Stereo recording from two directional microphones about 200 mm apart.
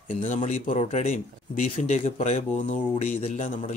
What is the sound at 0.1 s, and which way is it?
Speech, 35° left (ahead or behind).